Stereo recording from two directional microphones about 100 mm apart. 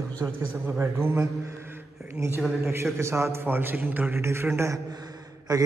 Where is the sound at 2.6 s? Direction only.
25° right (ahead or behind).